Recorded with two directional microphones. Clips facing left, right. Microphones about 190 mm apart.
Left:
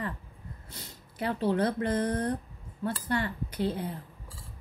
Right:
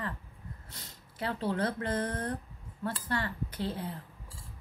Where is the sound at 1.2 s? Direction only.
15° left (ahead or behind).